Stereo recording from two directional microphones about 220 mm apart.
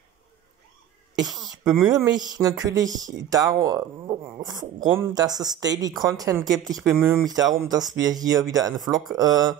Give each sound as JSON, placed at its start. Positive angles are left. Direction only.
{"t": 1.3, "sound": "speech", "side_deg": 0}
{"t": 1.7, "sound": "speech", "side_deg": -15}